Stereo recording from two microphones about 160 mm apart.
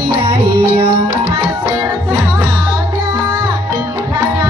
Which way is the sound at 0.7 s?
35° right (ahead or behind).